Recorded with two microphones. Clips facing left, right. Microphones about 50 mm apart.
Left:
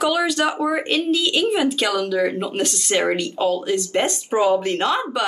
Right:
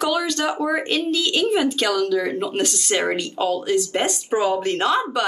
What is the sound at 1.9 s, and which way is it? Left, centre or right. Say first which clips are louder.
Speech: even; left.